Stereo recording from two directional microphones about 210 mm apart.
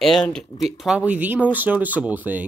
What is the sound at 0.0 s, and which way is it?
Speech, centre (ahead or behind).